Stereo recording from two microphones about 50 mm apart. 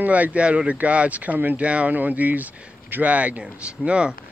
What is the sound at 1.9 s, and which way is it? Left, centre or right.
Speech, right.